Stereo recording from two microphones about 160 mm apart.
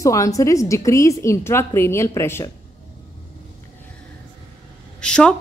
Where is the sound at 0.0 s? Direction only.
20° left (ahead or behind).